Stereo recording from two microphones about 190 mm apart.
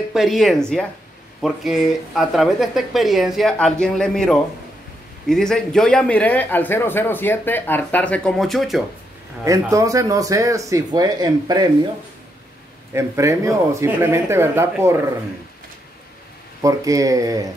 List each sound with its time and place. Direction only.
0.1 s a man's voice: centre (ahead or behind)
9.4 s speech: 15° right (ahead or behind)
12.9 s speech: 15° right (ahead or behind)
16.6 s speech: 15° right (ahead or behind)